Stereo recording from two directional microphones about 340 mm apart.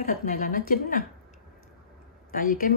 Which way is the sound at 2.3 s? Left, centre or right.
Left.